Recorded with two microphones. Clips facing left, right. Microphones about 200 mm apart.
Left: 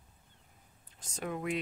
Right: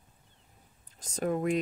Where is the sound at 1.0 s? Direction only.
40° right (ahead or behind).